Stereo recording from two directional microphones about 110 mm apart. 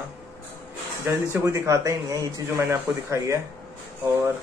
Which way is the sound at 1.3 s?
25° right (ahead or behind).